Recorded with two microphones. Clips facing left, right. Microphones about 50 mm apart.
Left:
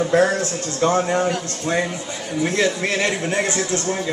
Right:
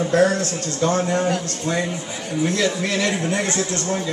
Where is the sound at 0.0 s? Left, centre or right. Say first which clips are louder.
Even; centre.